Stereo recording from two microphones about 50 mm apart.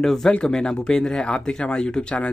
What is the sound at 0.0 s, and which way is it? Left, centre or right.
Speech, centre.